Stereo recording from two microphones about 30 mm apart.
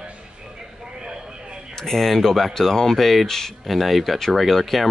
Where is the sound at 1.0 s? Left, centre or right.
Right.